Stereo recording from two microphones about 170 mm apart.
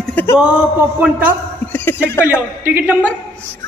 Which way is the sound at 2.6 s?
10° right (ahead or behind).